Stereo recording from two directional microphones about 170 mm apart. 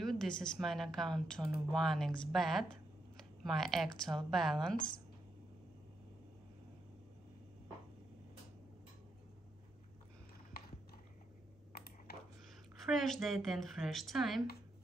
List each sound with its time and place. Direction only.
0.0 s speech: centre (ahead or behind)
11.7 s a sound: 65° left (ahead or behind)
12.8 s speech: centre (ahead or behind)